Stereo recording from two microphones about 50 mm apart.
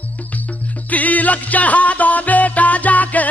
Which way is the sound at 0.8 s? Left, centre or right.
Left.